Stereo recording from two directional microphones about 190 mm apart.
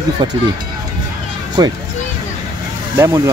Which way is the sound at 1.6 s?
20° right (ahead or behind).